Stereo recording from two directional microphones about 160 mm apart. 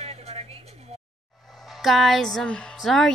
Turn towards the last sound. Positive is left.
turn(degrees=0)  # may be behind; listen again after turning